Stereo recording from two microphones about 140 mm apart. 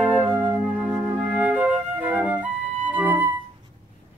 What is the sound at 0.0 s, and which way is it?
Music, 15° right (ahead or behind).